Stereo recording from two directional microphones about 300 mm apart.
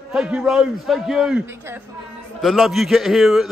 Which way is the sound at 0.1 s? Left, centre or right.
Centre.